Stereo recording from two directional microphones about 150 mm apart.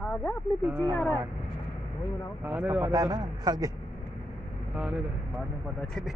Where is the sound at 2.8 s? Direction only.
25° right (ahead or behind).